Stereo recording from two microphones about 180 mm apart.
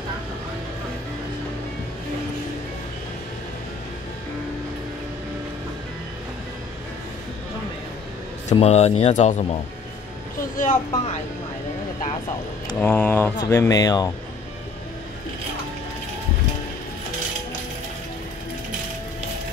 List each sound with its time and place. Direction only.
8.5 s speech: 35° left (ahead or behind)
10.6 s speech: 45° left (ahead or behind)
12.7 s speech: 10° left (ahead or behind)